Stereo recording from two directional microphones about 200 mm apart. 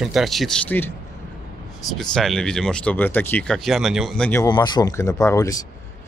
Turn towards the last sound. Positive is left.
turn(degrees=15)  # may be behind; listen again after turning